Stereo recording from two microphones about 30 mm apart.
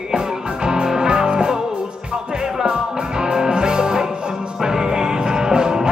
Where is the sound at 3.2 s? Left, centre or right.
Right.